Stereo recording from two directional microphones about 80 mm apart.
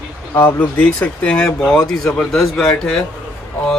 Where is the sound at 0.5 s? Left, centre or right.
Centre.